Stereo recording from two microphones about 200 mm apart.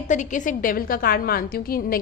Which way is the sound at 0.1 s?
40° left (ahead or behind).